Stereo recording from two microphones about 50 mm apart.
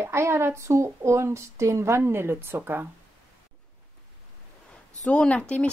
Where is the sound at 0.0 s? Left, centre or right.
Right.